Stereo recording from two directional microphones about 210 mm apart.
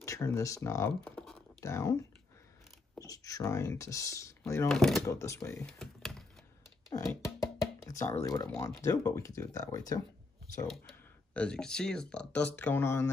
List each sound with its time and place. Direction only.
0.0 s speech: 15° left (ahead or behind)
1.1 s typing: centre (ahead or behind)
1.6 s speech: 15° left (ahead or behind)
3.0 s speech: 15° left (ahead or behind)
4.6 s speech: centre (ahead or behind)
5.0 s speech: 15° left (ahead or behind)
6.9 s music: 15° left (ahead or behind)
7.9 s speech: 15° left (ahead or behind)
10.7 s speech: 5° left (ahead or behind)